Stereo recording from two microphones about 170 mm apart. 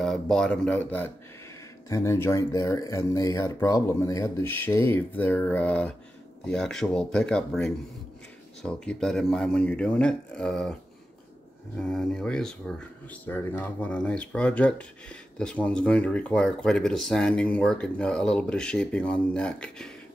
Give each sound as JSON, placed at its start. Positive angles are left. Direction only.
{"t": 0.0, "sound": "speech", "side_deg": 0}